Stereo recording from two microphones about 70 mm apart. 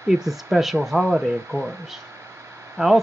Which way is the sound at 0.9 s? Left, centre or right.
Right.